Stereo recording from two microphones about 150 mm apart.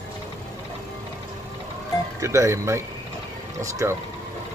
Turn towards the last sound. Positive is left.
turn(degrees=-20)  # may be behind; listen again after turning